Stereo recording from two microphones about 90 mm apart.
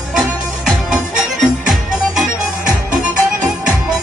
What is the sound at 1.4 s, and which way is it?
Music, 5° right (ahead or behind).